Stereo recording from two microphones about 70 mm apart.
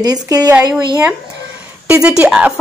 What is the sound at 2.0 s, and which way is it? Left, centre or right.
Speech, centre.